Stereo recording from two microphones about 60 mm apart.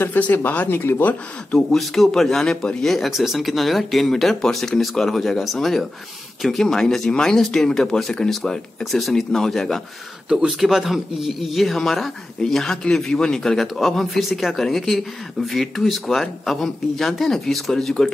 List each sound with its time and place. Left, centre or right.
0.2 s speech: left
0.7 s speech: left
1.7 s speech: centre
2.5 s speech: centre
2.8 s speech: centre
10.6 s speech: centre